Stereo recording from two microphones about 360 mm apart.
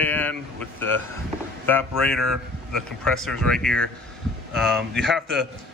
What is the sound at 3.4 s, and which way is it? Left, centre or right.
A man's voice, centre.